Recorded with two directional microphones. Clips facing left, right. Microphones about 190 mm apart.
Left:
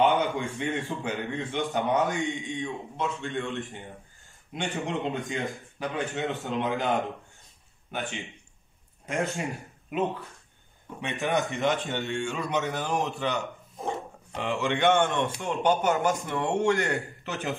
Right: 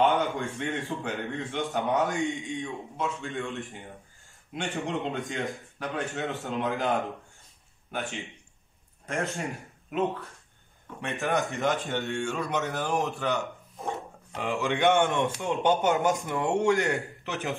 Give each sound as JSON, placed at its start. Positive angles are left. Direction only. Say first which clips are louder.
{"t": 0.0, "sound": "a man's voice", "louder": "left 1 dB", "side_deg": 0}
{"t": 13.8, "sound": "dog", "louder": "left 2 dB", "side_deg": 0}
{"t": 15.0, "sound": "a man's voice", "louder": "right 1 dB", "side_deg": -15}
{"t": 16.3, "sound": "a man's voice", "louder": "even", "side_deg": 0}